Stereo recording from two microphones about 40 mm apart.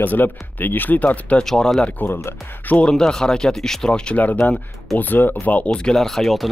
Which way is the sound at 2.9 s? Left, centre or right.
Centre.